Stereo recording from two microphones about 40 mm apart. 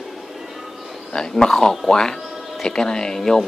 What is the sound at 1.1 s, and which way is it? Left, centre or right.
A man's voice, centre.